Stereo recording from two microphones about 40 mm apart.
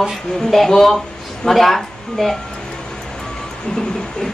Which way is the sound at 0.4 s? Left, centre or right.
Centre.